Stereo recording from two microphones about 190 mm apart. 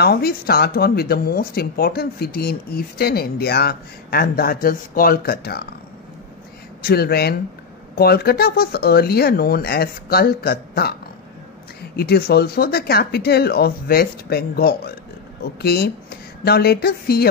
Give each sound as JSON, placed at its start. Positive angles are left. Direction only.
{"t": 0.0, "sound": "speech", "side_deg": 55}
{"t": 6.8, "sound": "speech", "side_deg": 55}